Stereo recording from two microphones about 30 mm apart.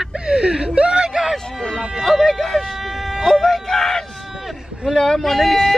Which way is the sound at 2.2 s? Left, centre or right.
Centre.